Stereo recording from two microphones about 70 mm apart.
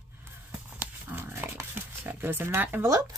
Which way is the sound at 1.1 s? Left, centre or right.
Right.